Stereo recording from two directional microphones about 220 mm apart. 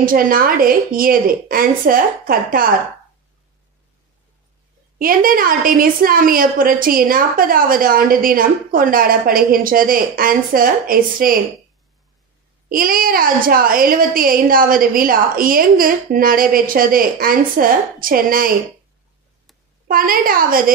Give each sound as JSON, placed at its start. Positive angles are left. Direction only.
{"t": 0.0, "sound": "a woman's voice", "side_deg": -40}
{"t": 4.9, "sound": "a woman's voice", "side_deg": -40}
{"t": 12.6, "sound": "a woman's voice", "side_deg": -40}
{"t": 19.9, "sound": "a woman's voice", "side_deg": -40}